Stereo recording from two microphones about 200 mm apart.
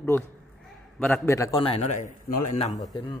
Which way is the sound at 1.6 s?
30° left (ahead or behind).